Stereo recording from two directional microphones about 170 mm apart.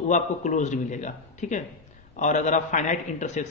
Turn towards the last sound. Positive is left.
turn(degrees=45)  # may be behind; listen again after turning